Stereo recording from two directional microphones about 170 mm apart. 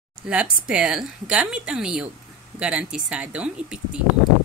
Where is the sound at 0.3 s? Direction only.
5° right (ahead or behind).